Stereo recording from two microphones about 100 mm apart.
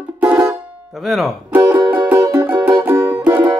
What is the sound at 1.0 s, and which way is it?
Speech, centre (ahead or behind).